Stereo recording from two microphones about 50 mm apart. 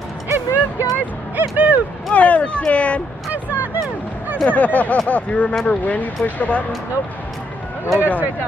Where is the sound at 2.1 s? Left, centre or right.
Left.